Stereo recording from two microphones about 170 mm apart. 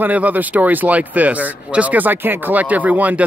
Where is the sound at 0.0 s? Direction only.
10° right (ahead or behind).